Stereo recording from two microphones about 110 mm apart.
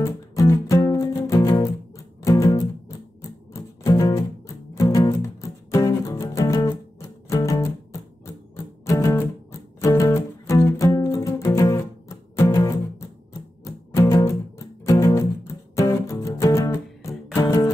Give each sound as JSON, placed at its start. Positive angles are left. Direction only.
{"t": 0.0, "sound": "music", "side_deg": 25}